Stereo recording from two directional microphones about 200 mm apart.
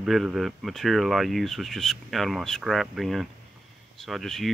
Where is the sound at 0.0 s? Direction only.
Centre (ahead or behind).